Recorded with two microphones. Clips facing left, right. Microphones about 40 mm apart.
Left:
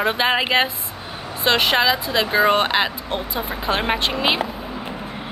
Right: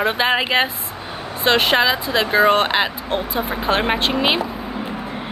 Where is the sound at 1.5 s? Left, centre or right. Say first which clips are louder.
Right 1 dB; centre.